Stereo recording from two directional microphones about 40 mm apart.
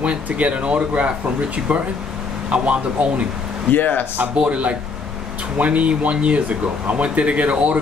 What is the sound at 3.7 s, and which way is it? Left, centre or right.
Speech, left.